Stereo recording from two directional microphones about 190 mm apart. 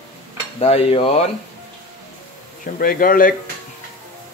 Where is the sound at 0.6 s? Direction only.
30° left (ahead or behind).